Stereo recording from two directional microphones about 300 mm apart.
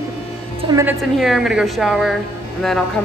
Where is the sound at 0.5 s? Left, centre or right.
Centre.